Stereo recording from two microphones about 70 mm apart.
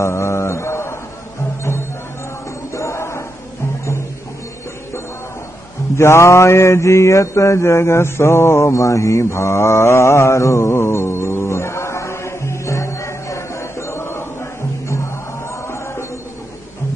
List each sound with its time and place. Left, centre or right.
0.0 s mantra: left
2.7 s a sound: left
5.9 s mantra: left
15.6 s music: left